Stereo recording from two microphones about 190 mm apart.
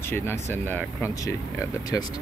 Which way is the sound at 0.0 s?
10° left (ahead or behind).